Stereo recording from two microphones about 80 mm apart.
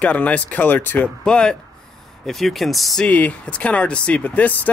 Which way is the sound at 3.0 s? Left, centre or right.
Centre.